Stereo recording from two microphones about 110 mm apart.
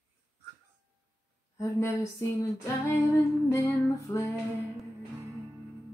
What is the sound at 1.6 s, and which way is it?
Female singing, 30° left (ahead or behind).